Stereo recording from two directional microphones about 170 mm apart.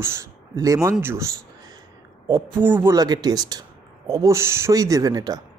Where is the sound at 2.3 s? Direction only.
10° right (ahead or behind).